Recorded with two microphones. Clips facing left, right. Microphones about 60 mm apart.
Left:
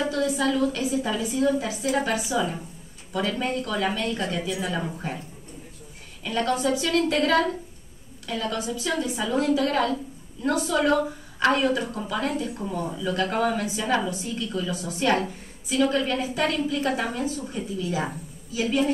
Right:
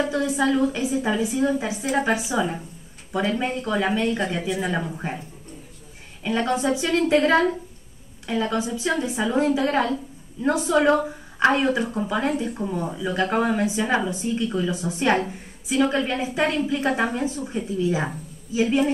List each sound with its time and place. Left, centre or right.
0.1 s a woman's voice: right
6.2 s a woman's voice: right